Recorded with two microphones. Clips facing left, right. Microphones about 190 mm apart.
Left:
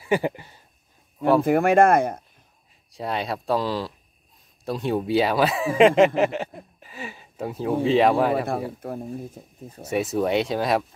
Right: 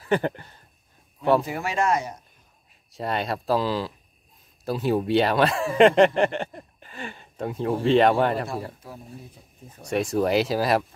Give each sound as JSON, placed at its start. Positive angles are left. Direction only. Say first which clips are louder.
{"t": 0.0, "sound": "a sound", "louder": "left 1 dB", "side_deg": 10}
{"t": 1.4, "sound": "speech", "louder": "left 10 dB", "side_deg": 55}
{"t": 2.9, "sound": "speech", "louder": "even", "side_deg": 0}
{"t": 8.8, "sound": "speech", "louder": "left 10 dB", "side_deg": 55}
{"t": 9.8, "sound": "speech", "louder": "even", "side_deg": 5}